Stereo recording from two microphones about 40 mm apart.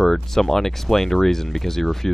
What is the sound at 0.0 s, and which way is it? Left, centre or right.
Speech, centre.